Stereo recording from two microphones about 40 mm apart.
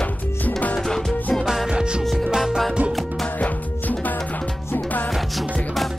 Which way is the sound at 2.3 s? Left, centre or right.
Centre.